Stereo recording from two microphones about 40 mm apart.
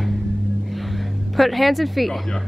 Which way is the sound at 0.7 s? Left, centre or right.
Centre.